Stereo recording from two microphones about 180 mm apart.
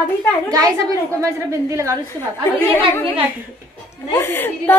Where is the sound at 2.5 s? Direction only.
10° left (ahead or behind).